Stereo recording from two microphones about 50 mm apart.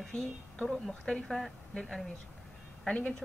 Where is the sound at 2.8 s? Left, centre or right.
Left.